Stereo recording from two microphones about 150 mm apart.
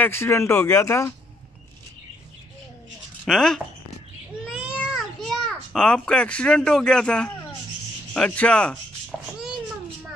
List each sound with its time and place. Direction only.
0.0 s speech: 15° left (ahead or behind)
3.3 s speech: 5° left (ahead or behind)
4.5 s a sound: 5° right (ahead or behind)
8.1 s speech: 5° left (ahead or behind)